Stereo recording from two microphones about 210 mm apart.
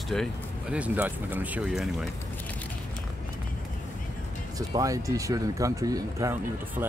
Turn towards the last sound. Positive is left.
turn(degrees=-15)  # may be behind; listen again after turning